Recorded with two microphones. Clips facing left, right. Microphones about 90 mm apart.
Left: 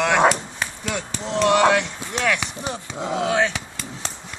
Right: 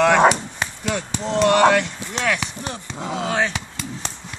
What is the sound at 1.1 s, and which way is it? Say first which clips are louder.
Speech: right 1 dB; centre (ahead or behind).